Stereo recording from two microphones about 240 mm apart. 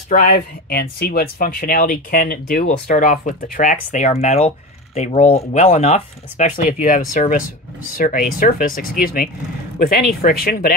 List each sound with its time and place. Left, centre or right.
0.1 s speech: left